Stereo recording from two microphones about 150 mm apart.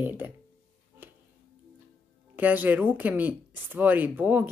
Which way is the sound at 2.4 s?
10° right (ahead or behind).